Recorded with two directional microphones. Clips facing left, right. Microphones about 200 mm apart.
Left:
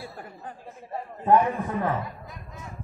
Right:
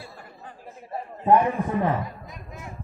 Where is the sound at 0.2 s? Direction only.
45° left (ahead or behind).